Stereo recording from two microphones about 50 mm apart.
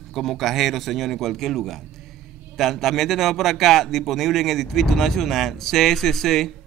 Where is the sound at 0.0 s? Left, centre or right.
Centre.